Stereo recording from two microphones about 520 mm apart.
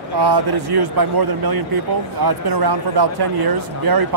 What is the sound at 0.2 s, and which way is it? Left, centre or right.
Speech, right.